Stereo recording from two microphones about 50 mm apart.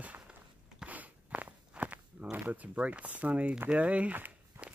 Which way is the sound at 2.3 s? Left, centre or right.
Right.